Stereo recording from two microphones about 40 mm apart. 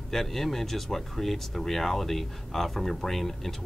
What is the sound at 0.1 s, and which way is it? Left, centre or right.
Speech, centre.